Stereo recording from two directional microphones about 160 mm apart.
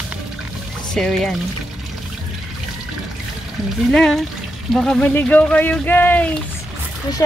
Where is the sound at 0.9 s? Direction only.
5° left (ahead or behind).